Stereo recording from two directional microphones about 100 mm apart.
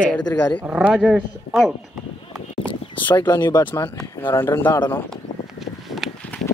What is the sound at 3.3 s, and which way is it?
Speech, 40° left (ahead or behind).